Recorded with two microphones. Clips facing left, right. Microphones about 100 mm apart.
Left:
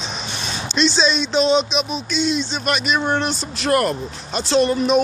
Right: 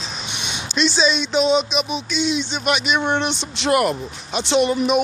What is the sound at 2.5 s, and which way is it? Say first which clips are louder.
Speech: even; 15° right (ahead or behind).